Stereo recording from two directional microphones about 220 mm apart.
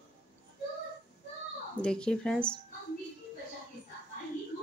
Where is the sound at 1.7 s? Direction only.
5° left (ahead or behind).